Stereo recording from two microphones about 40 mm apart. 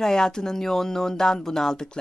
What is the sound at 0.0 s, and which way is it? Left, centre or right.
Speech, centre.